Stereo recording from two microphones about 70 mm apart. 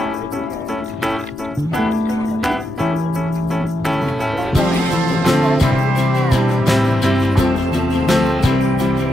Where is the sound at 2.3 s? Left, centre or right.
Centre.